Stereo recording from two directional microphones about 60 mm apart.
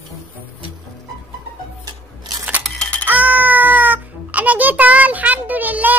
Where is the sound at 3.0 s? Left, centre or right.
Right.